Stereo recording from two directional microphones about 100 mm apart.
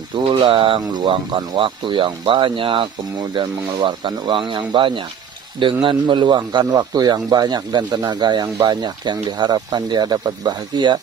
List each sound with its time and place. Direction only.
0.2 s speech: 60° right (ahead or behind)